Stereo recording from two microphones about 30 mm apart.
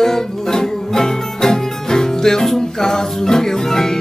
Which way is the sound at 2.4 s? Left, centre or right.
Centre.